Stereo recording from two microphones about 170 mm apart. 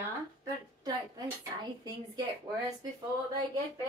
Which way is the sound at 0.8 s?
25° right (ahead or behind).